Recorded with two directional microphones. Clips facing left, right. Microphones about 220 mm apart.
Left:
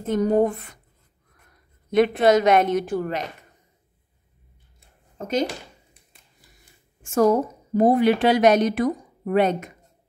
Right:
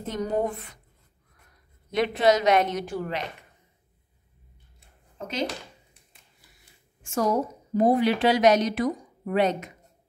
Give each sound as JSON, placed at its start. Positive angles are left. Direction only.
{"t": 0.1, "sound": "a woman's voice", "side_deg": 50}
{"t": 1.9, "sound": "a woman's voice", "side_deg": 55}
{"t": 4.7, "sound": "a sound", "side_deg": 45}
{"t": 7.0, "sound": "a woman's voice", "side_deg": 55}